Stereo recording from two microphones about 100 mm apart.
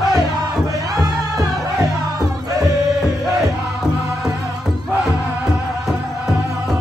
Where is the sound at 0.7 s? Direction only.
35° right (ahead or behind).